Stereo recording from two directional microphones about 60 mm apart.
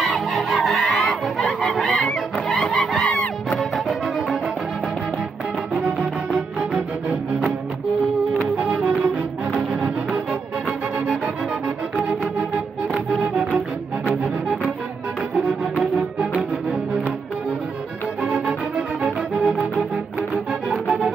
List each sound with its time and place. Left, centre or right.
0.0 s a sound: centre
2.3 s goose: left
3.4 s music: centre
5.8 s music: centre
8.5 s music: centre
12.0 s organ: right
13.2 s music: centre
19.0 s music: centre